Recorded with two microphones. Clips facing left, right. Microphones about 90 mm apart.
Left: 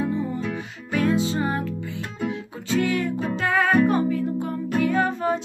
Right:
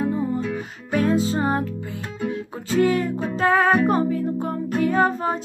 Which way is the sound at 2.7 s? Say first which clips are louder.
Right 3 dB; 40° right (ahead or behind).